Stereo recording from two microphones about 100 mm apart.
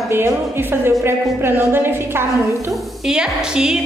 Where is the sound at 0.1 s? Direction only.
20° right (ahead or behind).